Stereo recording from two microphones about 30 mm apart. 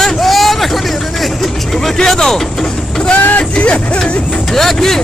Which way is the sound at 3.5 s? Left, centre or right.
Left.